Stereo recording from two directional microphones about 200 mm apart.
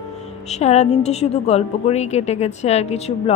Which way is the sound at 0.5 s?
35° left (ahead or behind).